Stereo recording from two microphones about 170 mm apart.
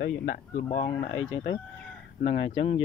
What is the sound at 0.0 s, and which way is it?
Speech, 50° left (ahead or behind).